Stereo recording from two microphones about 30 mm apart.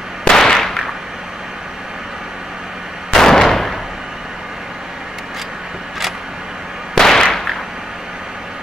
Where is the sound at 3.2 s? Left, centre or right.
Centre.